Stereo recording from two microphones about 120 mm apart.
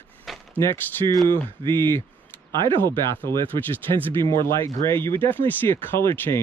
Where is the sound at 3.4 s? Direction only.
15° left (ahead or behind).